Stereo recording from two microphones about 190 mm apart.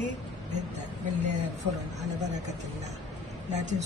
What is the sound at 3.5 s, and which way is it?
Speech, 40° right (ahead or behind).